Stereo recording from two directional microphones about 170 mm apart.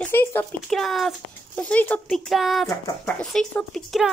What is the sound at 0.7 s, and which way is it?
Speech, centre (ahead or behind).